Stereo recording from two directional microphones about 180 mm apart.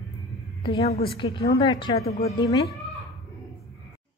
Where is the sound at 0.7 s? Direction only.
35° left (ahead or behind).